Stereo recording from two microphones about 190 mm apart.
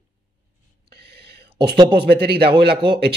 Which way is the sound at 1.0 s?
60° right (ahead or behind).